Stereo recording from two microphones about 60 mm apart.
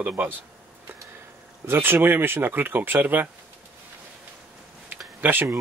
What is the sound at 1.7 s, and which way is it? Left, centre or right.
Speech, right.